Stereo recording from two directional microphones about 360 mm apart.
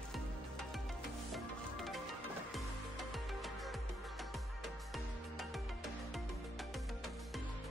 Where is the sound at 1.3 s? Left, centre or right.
Centre.